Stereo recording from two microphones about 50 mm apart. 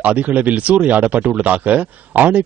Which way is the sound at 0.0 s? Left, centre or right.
Right.